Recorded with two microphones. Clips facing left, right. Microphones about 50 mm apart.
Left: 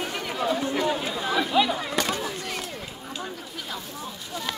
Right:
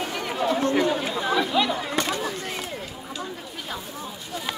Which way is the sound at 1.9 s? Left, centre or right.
Right.